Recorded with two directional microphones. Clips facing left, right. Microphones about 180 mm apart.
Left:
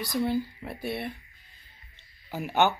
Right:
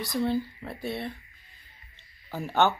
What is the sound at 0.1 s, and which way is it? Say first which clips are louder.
Speech: even; 10° left (ahead or behind).